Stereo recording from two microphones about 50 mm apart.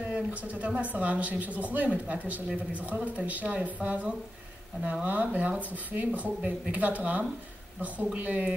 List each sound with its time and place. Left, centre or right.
0.1 s speech: right